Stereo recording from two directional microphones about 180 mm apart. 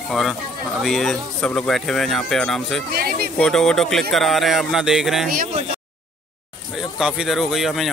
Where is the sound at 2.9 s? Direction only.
55° right (ahead or behind).